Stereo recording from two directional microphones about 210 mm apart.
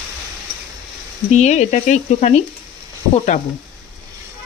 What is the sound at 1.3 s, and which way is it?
Speech, 35° left (ahead or behind).